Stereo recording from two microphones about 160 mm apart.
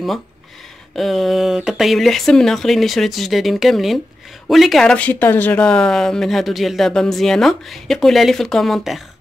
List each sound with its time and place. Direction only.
0.9 s speech: centre (ahead or behind)